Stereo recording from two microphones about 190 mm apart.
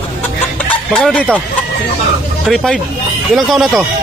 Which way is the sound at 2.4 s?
5° left (ahead or behind).